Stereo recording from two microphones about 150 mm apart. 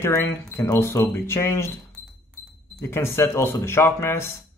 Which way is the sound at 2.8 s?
15° left (ahead or behind).